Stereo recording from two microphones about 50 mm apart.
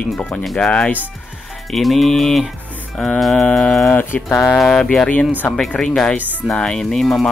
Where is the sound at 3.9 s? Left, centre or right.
Left.